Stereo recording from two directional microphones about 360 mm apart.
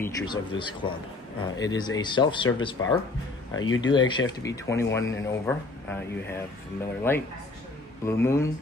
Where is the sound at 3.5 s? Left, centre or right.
Left.